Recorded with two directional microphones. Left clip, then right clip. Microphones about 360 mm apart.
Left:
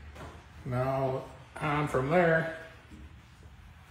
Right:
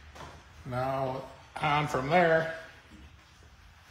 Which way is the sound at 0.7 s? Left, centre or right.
Centre.